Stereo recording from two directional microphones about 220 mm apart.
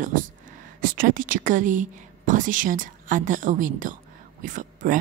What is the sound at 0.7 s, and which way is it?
A woman's voice, 40° right (ahead or behind).